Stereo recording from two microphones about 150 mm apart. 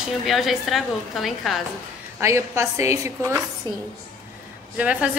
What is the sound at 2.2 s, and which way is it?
A woman's voice, 20° right (ahead or behind).